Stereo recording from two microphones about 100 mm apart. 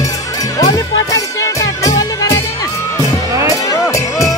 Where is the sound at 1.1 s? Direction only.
35° left (ahead or behind).